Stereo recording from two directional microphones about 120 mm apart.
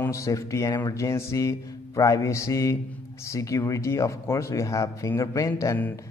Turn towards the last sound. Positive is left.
turn(degrees=25)  # may be behind; listen again after turning